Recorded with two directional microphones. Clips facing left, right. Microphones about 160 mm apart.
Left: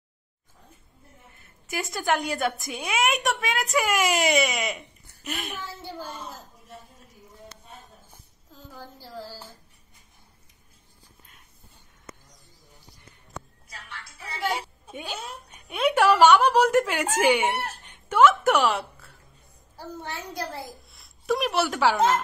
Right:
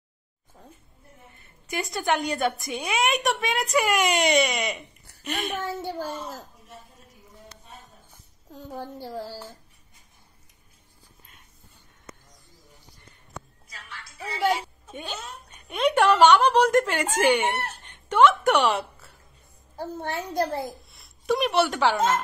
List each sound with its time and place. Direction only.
1.4 s a woman's voice: centre (ahead or behind)
5.6 s speech: 75° right (ahead or behind)
8.5 s a woman's voice: 70° right (ahead or behind)
14.9 s a woman's voice: 10° left (ahead or behind)
19.8 s a child's voice: 55° right (ahead or behind)
20.9 s speech: centre (ahead or behind)